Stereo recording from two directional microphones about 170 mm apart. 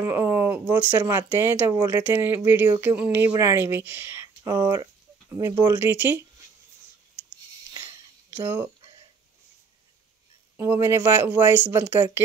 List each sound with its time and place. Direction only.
0.0 s speech: 15° right (ahead or behind)
5.8 s speech: 10° right (ahead or behind)
8.4 s speech: 10° right (ahead or behind)
10.6 s speech: 15° right (ahead or behind)